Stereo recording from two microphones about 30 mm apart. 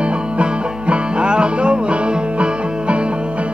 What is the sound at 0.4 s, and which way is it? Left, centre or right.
Music, right.